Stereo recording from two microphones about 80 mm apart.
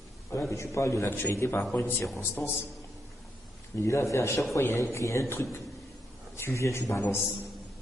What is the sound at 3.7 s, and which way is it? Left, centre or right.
A man's voice, left.